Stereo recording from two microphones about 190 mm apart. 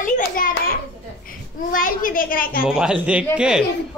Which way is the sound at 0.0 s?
45° left (ahead or behind).